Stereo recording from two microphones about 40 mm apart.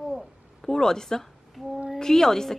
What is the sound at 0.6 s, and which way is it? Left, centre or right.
Speech, centre.